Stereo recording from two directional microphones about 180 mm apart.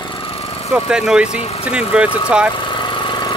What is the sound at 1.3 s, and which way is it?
Speech, 35° left (ahead or behind).